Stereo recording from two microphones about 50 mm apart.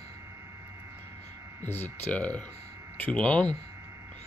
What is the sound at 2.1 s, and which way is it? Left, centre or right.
Speech, left.